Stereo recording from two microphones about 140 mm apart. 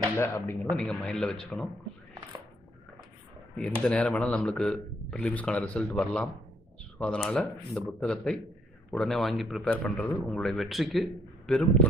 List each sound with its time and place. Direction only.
0.1 s speech: 20° left (ahead or behind)
0.7 s speech: 5° left (ahead or behind)
3.8 s a man's voice: 10° left (ahead or behind)